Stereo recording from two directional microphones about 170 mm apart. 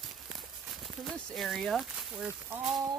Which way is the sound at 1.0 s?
Centre (ahead or behind).